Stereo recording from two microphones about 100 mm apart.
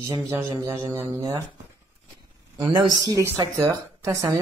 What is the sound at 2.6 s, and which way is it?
Speech, 50° right (ahead or behind).